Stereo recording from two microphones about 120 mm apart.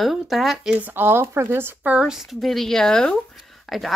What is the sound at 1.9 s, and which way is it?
Speech, 5° right (ahead or behind).